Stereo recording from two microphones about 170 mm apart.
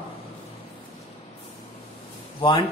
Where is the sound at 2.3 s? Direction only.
30° left (ahead or behind).